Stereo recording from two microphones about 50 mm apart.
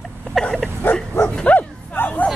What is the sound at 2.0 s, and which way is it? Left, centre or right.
Hubbub, left.